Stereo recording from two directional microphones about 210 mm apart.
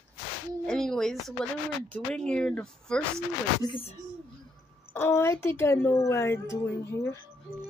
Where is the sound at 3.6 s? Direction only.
25° left (ahead or behind).